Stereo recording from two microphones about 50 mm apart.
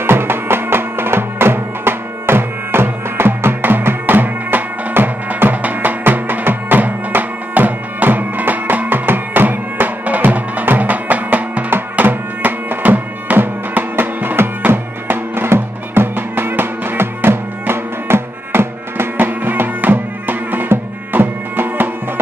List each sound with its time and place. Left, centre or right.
0.0 s music: right